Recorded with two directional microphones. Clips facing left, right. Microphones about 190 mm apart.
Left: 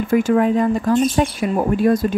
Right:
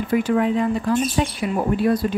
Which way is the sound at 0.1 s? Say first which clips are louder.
Left 4 dB; 45° left (ahead or behind).